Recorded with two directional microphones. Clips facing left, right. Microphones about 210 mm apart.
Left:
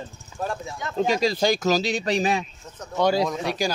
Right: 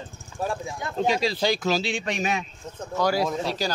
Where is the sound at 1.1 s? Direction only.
45° left (ahead or behind).